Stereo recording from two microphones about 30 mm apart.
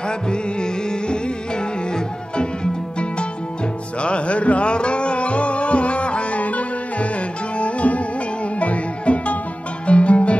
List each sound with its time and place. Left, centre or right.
0.3 s music: left
2.3 s music: left
6.4 s sitar: left
7.5 s music: left